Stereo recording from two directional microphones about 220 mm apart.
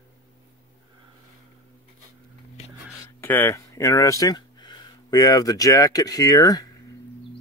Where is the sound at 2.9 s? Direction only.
10° left (ahead or behind).